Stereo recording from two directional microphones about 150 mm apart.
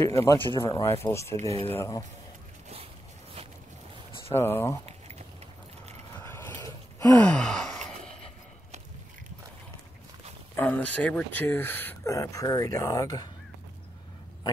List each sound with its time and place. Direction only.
0.0 s speech: 20° left (ahead or behind)
4.3 s speech: 15° left (ahead or behind)
6.2 s a sound: 15° left (ahead or behind)
7.2 s gasp: 5° left (ahead or behind)
10.5 s speech: 10° left (ahead or behind)